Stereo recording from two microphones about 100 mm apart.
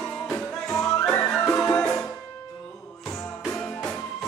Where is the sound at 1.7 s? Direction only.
10° left (ahead or behind).